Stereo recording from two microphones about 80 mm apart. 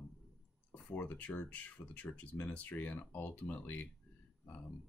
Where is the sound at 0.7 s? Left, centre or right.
Left.